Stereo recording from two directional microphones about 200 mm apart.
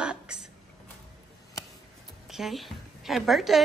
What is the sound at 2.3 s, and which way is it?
A woman's voice, centre (ahead or behind).